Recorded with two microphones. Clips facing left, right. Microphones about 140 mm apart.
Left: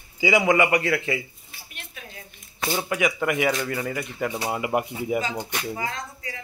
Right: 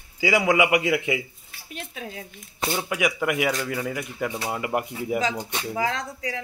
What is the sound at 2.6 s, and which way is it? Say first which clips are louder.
Speech: left 1 dB; centre (ahead or behind).